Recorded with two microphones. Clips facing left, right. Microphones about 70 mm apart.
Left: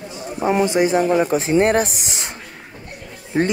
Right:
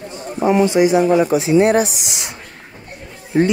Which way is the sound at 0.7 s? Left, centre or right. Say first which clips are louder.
Right 3 dB; left.